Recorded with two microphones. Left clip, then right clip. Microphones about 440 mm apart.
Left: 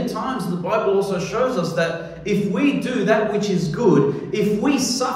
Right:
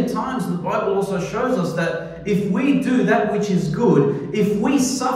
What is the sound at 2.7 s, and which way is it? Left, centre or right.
A man's voice, centre.